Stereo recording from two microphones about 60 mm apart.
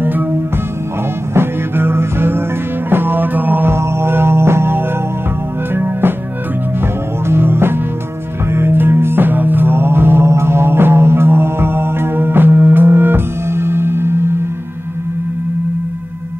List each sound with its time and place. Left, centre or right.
1.3 s music: right
3.7 s music: right
7.2 s music: right